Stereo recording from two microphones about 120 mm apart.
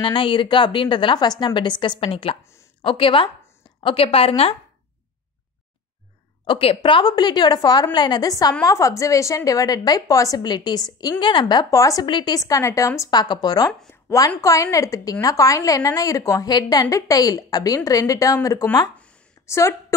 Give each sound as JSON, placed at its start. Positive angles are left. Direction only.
{"t": 0.0, "sound": "a woman's voice", "side_deg": 45}
{"t": 6.4, "sound": "a woman's voice", "side_deg": 45}
{"t": 12.1, "sound": "a woman's voice", "side_deg": 40}